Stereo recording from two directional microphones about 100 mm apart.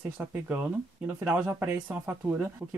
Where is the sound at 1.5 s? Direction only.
25° right (ahead or behind).